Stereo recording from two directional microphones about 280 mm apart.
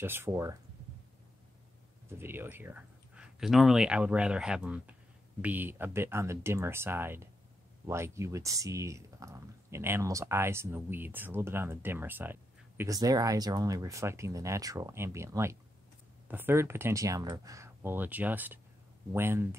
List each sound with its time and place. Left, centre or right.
0.0 s speech: centre
2.0 s speech: centre